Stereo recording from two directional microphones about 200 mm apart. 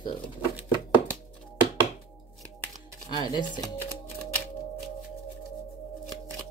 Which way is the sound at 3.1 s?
20° left (ahead or behind).